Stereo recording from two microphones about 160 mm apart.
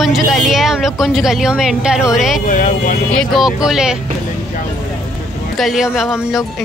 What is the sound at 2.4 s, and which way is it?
Speech, 55° left (ahead or behind).